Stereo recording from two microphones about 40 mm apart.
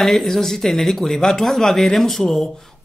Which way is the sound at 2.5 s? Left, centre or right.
Centre.